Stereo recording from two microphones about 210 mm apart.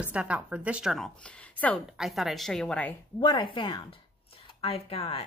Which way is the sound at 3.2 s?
20° left (ahead or behind).